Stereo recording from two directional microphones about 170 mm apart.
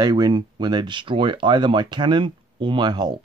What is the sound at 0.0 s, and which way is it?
Speech, 25° right (ahead or behind).